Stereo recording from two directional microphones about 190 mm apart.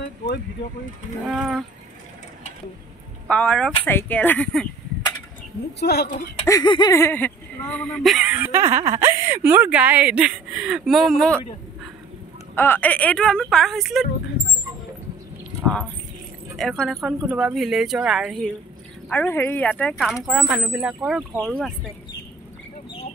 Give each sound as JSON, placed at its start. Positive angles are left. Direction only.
{"t": 1.2, "sound": "speech", "side_deg": 0}
{"t": 3.3, "sound": "speech", "side_deg": 5}
{"t": 5.8, "sound": "speech", "side_deg": 60}
{"t": 6.4, "sound": "speech", "side_deg": 20}
{"t": 15.6, "sound": "keys jangling", "side_deg": 0}
{"t": 16.5, "sound": "speech", "side_deg": 0}
{"t": 20.2, "sound": "speech", "side_deg": -10}